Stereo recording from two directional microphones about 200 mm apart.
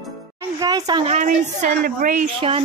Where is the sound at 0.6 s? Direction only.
20° right (ahead or behind).